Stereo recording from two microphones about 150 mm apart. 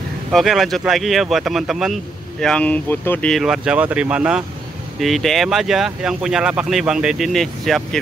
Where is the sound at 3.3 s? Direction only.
Centre (ahead or behind).